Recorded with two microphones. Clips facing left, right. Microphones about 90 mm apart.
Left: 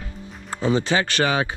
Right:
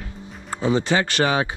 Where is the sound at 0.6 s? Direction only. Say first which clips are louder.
Right 1 dB; 25° right (ahead or behind).